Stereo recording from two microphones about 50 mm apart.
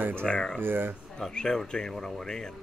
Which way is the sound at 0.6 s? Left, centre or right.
Right.